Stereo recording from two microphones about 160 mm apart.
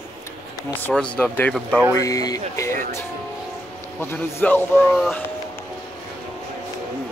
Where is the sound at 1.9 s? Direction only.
20° left (ahead or behind).